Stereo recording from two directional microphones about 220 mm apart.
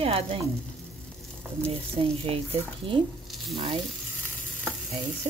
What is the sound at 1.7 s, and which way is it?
Speech, 25° right (ahead or behind).